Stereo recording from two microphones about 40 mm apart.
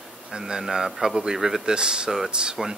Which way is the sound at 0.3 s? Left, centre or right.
Centre.